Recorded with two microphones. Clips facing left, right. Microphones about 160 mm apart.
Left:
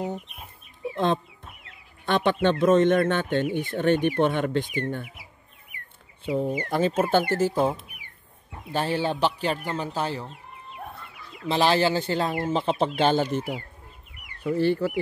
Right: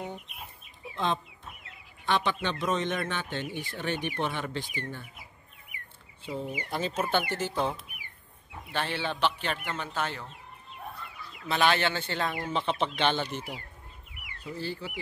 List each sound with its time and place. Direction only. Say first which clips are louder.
0.9 s speech: left 6 dB; 55° left (ahead or behind)
6.5 s speech: left 7 dB; 50° left (ahead or behind)
8.7 s speech: left 7 dB; 40° left (ahead or behind)
11.4 s speech: left 5 dB; 30° left (ahead or behind); by 13.6 s 45° left (ahead or behind)
14.4 s speech: left 13 dB; 60° left (ahead or behind)